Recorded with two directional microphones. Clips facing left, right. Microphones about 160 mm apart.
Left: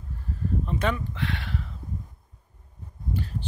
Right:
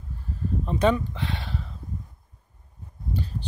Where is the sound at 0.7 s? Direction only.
30° right (ahead or behind).